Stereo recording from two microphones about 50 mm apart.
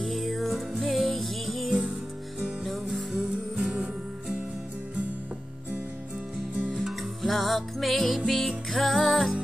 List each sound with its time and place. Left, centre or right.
0.0 s music: centre
1.7 s music: centre
3.3 s music: centre
6.7 s music: centre